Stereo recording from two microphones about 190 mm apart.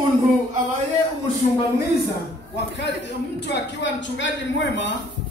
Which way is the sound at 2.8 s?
65° left (ahead or behind).